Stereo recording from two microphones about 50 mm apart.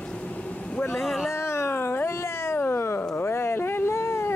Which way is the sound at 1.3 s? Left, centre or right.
Left.